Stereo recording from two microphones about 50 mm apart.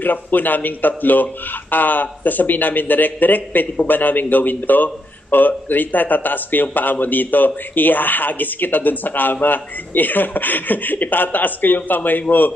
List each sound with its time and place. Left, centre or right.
0.0 s speech: left